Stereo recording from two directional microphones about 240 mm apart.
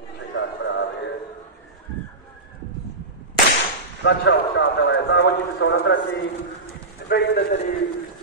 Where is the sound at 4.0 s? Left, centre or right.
Left.